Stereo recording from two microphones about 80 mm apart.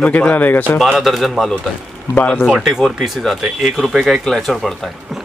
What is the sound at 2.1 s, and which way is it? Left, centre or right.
Speech, left.